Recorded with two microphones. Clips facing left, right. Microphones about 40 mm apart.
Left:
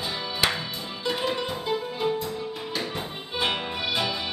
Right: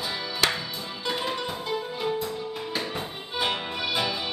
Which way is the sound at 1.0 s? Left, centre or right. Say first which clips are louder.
Left 2 dB; centre.